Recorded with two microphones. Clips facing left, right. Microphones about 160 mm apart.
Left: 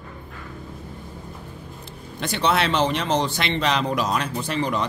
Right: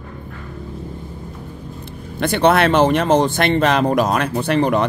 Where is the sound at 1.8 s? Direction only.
55° right (ahead or behind).